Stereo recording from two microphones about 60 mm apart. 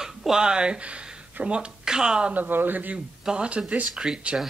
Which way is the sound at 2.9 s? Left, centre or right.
Centre.